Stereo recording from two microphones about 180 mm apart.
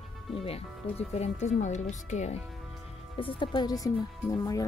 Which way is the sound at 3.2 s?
30° left (ahead or behind).